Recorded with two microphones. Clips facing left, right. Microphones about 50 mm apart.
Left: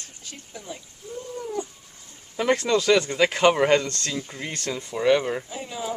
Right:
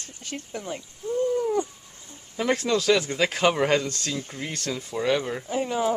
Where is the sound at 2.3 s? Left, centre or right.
Centre.